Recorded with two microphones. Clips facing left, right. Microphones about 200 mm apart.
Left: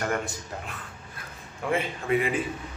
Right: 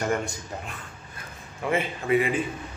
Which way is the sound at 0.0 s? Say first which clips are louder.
Right 2 dB; centre (ahead or behind).